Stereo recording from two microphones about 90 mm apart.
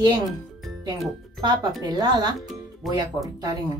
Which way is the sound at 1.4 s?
55° right (ahead or behind).